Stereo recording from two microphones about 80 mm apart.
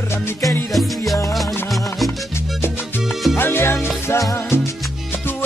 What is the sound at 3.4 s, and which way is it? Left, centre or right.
Music, left.